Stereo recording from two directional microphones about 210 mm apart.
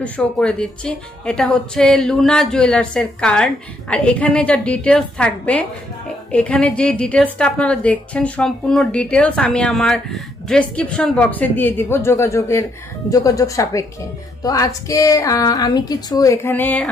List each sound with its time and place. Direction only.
0.0 s a woman's voice: 5° left (ahead or behind)